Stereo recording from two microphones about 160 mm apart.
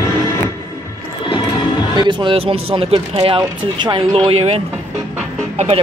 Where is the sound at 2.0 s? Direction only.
30° right (ahead or behind).